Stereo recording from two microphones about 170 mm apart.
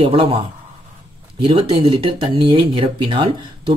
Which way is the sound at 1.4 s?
30° right (ahead or behind).